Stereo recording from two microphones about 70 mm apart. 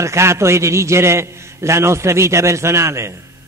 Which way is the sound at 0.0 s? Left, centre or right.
Right.